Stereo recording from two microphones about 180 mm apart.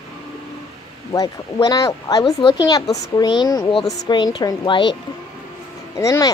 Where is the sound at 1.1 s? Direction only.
20° left (ahead or behind).